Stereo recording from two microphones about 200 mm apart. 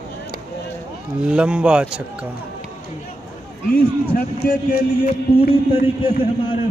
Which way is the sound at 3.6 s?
45° left (ahead or behind).